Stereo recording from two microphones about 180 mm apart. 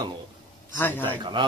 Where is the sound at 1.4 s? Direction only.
25° right (ahead or behind).